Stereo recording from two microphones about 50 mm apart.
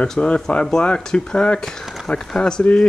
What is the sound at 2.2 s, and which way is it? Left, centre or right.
Speech, centre.